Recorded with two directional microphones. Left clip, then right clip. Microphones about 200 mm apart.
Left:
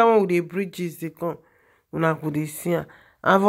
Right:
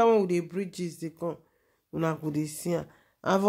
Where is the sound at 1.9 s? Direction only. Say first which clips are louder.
Left 7 dB; 25° left (ahead or behind).